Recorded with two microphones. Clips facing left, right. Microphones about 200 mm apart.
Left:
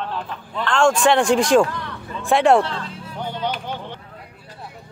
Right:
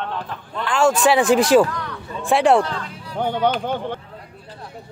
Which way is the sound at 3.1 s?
55° right (ahead or behind).